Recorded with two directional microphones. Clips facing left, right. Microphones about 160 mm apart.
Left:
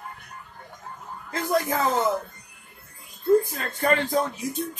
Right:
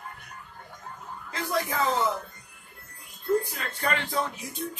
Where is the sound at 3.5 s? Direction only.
45° left (ahead or behind).